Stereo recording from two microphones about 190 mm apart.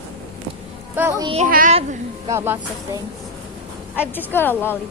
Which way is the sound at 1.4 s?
50° right (ahead or behind).